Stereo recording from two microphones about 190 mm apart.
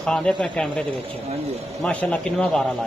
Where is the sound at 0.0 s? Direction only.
5° left (ahead or behind).